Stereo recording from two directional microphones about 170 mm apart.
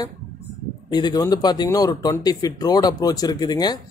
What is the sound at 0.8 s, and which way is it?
Speech, 25° left (ahead or behind).